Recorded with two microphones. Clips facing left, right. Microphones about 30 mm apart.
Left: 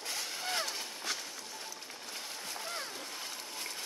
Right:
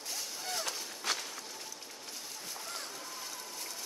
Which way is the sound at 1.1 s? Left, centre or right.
Right.